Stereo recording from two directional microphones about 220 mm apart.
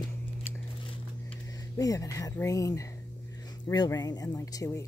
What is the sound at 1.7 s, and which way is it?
Speech, 15° left (ahead or behind).